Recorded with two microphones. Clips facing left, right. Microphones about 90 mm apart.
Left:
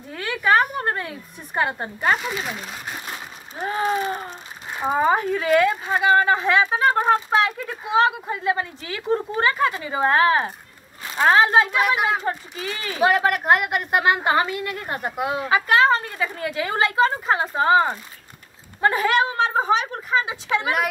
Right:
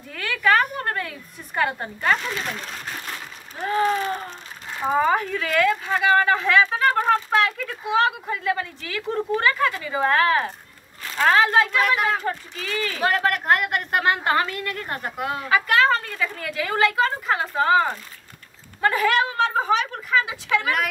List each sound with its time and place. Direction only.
0.1 s a woman's voice: 25° left (ahead or behind)